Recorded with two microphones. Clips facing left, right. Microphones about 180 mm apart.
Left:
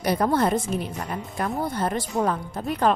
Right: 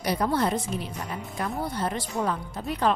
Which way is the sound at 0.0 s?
50° left (ahead or behind).